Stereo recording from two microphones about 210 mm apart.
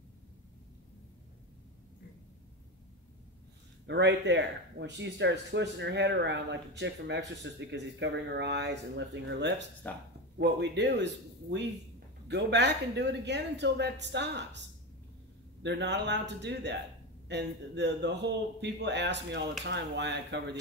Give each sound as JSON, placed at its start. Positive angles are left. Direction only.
{"t": 3.8, "sound": "speech", "side_deg": -55}
{"t": 12.3, "sound": "speech", "side_deg": -55}
{"t": 15.6, "sound": "speech", "side_deg": -55}